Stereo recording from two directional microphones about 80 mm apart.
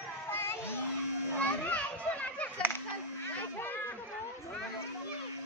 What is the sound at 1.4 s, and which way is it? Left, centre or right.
Children playing, centre.